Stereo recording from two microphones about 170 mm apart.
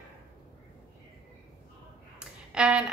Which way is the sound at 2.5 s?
5° right (ahead or behind).